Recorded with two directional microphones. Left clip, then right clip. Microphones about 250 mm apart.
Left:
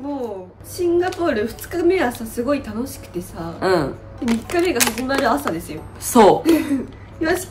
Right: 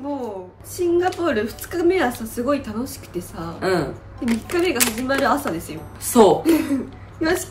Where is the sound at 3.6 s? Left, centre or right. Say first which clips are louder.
Left 3 dB; centre.